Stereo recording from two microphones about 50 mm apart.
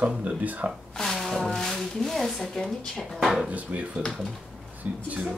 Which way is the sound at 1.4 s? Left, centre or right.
Centre.